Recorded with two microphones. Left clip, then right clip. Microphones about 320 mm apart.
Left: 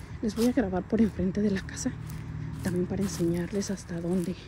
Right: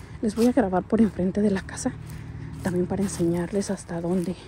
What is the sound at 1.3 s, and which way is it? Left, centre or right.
Speech, centre.